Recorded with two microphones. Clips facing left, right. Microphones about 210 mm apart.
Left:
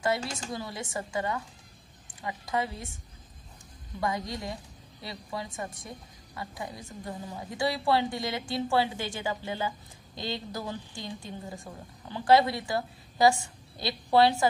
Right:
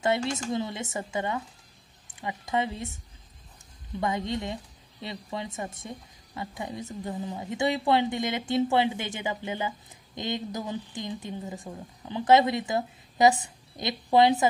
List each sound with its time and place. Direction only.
0.0 s a woman's voice: 25° right (ahead or behind)
4.0 s a woman's voice: 25° right (ahead or behind)